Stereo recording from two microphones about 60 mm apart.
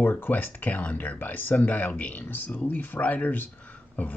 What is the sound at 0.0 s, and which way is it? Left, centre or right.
Speech, left.